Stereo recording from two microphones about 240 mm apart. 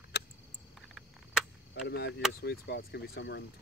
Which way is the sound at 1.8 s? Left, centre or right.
Left.